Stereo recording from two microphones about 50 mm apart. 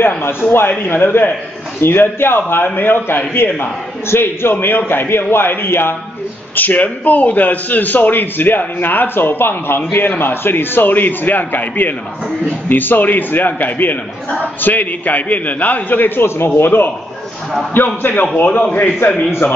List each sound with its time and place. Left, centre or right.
0.2 s a man's voice: left
4.1 s a man's voice: left
6.5 s a man's voice: left
16.4 s a man's voice: left